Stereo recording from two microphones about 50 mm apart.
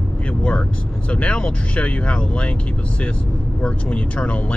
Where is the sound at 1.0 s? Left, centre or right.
Left.